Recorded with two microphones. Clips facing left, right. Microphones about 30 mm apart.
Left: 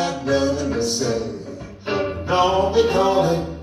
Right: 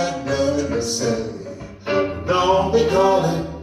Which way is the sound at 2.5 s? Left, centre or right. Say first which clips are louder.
Right 1 dB; centre.